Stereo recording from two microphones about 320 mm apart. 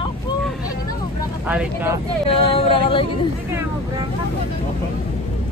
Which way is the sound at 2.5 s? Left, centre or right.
Centre.